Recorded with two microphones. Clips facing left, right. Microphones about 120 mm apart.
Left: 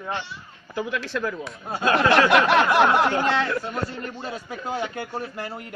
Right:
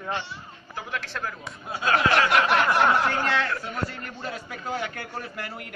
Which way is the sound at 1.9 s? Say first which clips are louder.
Left 4 dB; 90° left.